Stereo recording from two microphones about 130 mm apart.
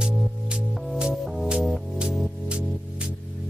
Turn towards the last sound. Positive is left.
turn(degrees=-5)  # may be behind; listen again after turning